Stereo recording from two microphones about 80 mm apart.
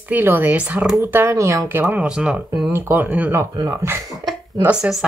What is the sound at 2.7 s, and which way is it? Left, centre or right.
Speech, right.